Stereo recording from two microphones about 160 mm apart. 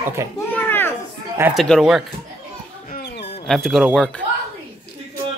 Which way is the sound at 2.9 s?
90° left.